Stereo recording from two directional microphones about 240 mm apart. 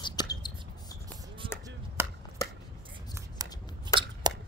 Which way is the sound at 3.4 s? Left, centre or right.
Centre.